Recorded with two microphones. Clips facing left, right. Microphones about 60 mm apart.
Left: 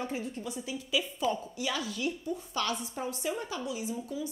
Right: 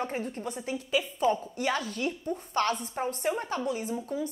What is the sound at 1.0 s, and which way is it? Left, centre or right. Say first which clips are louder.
A woman's voice: right 5 dB; right.